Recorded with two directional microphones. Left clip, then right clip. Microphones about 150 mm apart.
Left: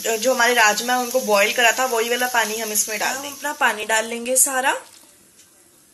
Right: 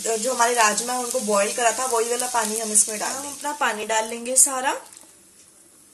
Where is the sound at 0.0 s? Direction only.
Centre (ahead or behind).